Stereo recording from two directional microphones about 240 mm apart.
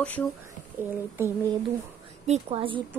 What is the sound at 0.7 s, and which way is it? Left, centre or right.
Speech, centre.